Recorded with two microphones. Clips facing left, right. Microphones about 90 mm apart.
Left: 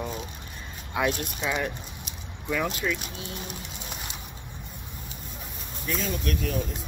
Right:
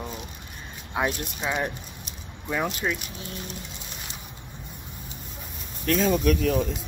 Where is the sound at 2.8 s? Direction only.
25° right (ahead or behind).